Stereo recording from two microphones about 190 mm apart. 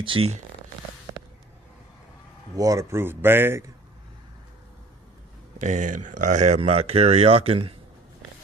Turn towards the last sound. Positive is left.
turn(degrees=-30)  # may be behind; listen again after turning